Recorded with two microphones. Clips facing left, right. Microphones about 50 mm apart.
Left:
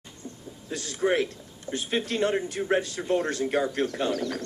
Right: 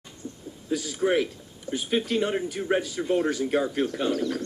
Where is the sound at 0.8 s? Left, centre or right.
Centre.